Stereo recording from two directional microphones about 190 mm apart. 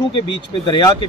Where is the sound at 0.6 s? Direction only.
20° left (ahead or behind).